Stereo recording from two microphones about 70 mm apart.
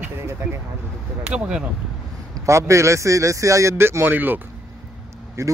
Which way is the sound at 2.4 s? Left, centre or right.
Right.